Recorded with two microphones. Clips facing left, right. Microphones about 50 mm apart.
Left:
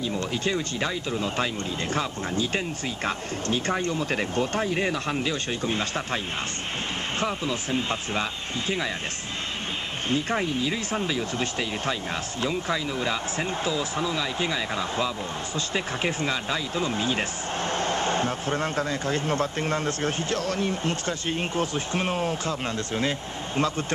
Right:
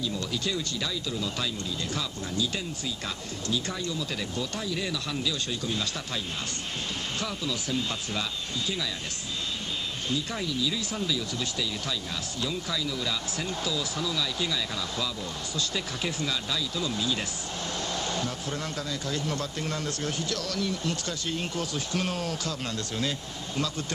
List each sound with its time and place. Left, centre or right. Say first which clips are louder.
0.0 s speech: left 4 dB; left
10.0 s speech: left 7 dB; left